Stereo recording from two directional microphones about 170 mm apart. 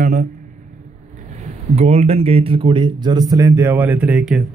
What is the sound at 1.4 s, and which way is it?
Speech, 40° right (ahead or behind).